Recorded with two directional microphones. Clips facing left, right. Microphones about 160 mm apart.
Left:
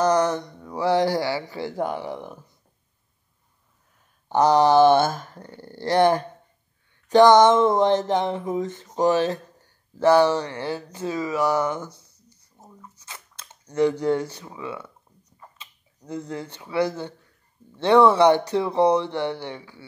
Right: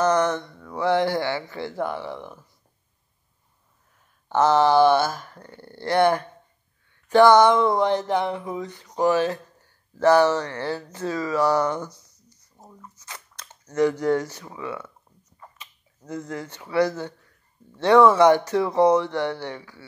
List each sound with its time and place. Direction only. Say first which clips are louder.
0.5 s speech: left 1 dB; 20° left (ahead or behind)
0.8 s speech: left 1 dB; 40° left (ahead or behind)
1.2 s speech: left 1 dB; 15° left (ahead or behind)
4.3 s speech: left 1 dB; 15° left (ahead or behind)
4.8 s a sound: left 2 dB; 50° left (ahead or behind)
5.2 s speech: left 2 dB; 25° left (ahead or behind)
5.6 s speech: left 1 dB; 40° left (ahead or behind)
7.1 s speech: left 1 dB; 20° left (ahead or behind)
11.9 s a sound: left 1 dB; 30° left (ahead or behind)
13.7 s speech: even; 25° left (ahead or behind)
15.6 s a sound: even; 25° left (ahead or behind)
16.4 s speech: right 3 dB; 20° left (ahead or behind)